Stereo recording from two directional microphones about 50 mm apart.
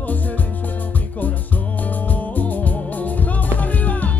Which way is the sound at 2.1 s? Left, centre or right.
Left.